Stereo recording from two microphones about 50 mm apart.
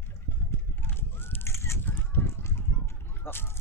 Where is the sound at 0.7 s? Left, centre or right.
Left.